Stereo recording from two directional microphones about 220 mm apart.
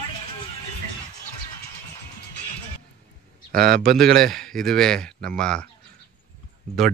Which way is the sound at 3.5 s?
40° right (ahead or behind).